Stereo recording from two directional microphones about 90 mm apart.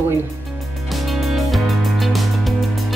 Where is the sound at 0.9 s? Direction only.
Centre (ahead or behind).